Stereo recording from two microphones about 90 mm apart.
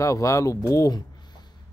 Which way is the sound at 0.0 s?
35° left (ahead or behind).